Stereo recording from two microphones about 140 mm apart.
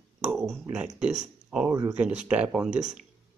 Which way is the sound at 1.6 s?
20° right (ahead or behind).